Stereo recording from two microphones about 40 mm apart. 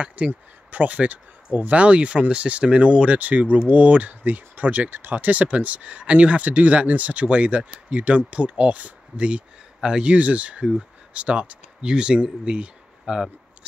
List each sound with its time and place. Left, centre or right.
0.0 s speech: right
3.2 s speech: right
9.8 s speech: right
10.1 s speech: right
13.0 s speech: centre